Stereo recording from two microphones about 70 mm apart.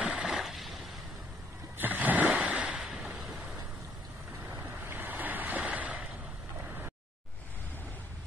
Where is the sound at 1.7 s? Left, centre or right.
Right.